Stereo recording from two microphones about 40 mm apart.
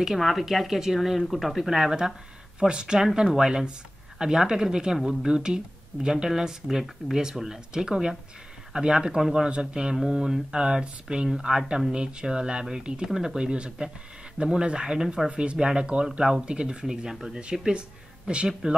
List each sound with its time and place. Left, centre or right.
0.2 s speech: centre
2.6 s speech: right
9.9 s speech: centre
13.5 s speech: right
16.8 s speech: centre